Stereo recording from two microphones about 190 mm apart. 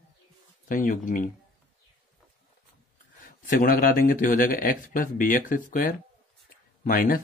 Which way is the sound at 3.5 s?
45° left (ahead or behind).